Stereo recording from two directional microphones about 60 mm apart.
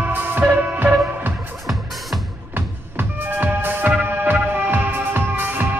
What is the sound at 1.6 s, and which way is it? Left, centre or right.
Music, centre.